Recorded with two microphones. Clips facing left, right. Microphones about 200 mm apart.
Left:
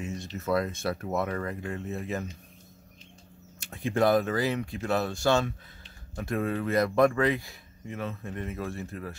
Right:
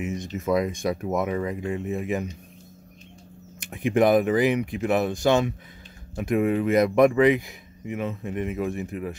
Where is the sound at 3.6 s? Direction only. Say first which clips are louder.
Right 5 dB; 15° right (ahead or behind).